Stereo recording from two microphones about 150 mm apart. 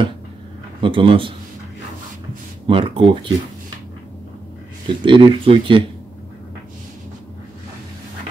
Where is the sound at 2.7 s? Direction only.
35° right (ahead or behind).